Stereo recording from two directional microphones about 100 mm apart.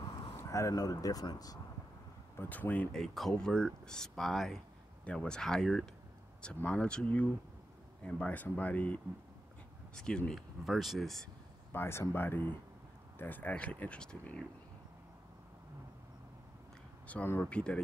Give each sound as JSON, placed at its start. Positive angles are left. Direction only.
{"t": 0.4, "sound": "speech", "side_deg": 30}
{"t": 2.3, "sound": "speech", "side_deg": 20}
{"t": 2.9, "sound": "speech", "side_deg": 5}
{"t": 6.4, "sound": "speech", "side_deg": 15}
{"t": 11.7, "sound": "speech", "side_deg": 25}
{"t": 17.1, "sound": "speech", "side_deg": 20}